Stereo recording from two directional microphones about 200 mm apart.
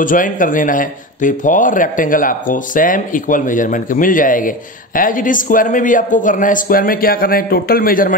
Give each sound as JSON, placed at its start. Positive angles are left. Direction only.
{"t": 0.0, "sound": "speech", "side_deg": 40}